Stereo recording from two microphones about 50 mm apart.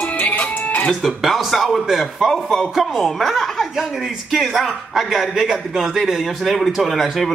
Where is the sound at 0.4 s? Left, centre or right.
Left.